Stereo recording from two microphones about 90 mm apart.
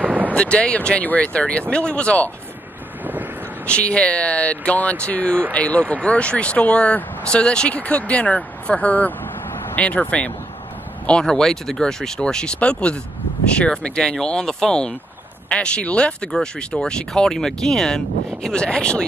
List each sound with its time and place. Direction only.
0.0 s a sound: 15° right (ahead or behind)
0.3 s speech: 10° left (ahead or behind)
3.0 s vehicle: 20° right (ahead or behind)
3.6 s speech: 15° left (ahead or behind)